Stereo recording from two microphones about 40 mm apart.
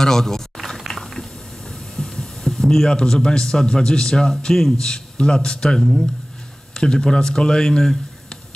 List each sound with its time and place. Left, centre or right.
0.0 s a sound: centre
2.9 s a man's voice: left
5.8 s speech: centre
6.7 s speech: centre